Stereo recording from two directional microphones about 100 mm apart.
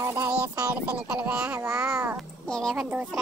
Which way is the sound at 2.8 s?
10° right (ahead or behind).